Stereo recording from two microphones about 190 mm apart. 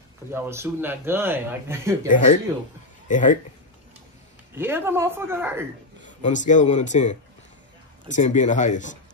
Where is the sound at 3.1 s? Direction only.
40° left (ahead or behind).